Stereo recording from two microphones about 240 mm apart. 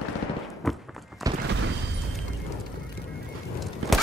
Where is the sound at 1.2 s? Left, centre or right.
Centre.